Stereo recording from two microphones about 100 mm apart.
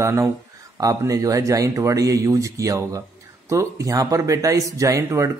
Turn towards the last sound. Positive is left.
turn(degrees=-30)  # may be behind; listen again after turning